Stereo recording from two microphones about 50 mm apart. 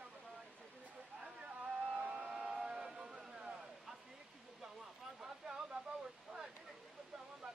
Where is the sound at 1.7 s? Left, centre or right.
Right.